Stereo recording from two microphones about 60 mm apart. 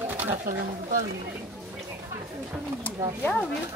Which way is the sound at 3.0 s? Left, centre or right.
Right.